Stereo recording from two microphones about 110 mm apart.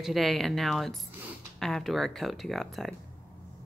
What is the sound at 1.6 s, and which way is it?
A woman's voice, 5° left (ahead or behind).